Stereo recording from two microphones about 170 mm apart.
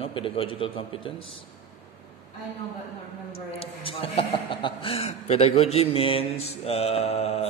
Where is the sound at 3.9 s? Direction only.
35° left (ahead or behind).